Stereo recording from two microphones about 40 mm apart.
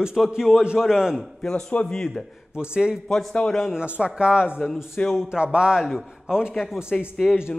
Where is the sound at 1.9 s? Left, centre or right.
Centre.